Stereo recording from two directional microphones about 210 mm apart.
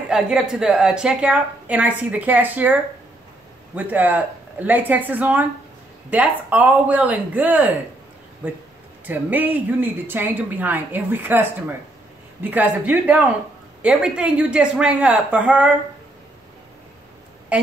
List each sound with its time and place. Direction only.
0.1 s a woman's voice: centre (ahead or behind)
17.5 s a woman's voice: 5° right (ahead or behind)